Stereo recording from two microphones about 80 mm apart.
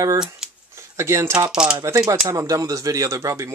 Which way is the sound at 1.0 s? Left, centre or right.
Right.